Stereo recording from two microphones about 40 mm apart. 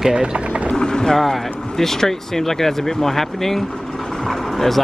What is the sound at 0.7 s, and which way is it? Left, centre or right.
Boat, centre.